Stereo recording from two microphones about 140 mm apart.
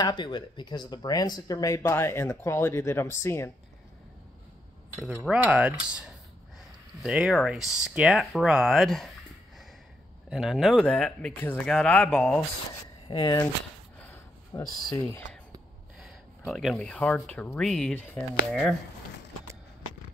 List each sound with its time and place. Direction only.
0.0 s speech: 35° left (ahead or behind); by 3.5 s 20° left (ahead or behind)
5.3 s speech: 10° right (ahead or behind)
10.3 s speech: centre (ahead or behind)
13.1 s speech: 30° left (ahead or behind)
13.9 s a sound: 15° left (ahead or behind)
14.5 s speech: 20° left (ahead or behind)
16.0 s speech: centre (ahead or behind)